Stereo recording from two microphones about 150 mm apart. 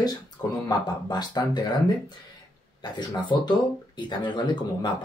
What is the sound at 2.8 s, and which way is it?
Speech, 30° left (ahead or behind).